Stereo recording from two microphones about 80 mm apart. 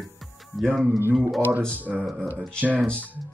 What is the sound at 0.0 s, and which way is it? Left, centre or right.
Music, centre.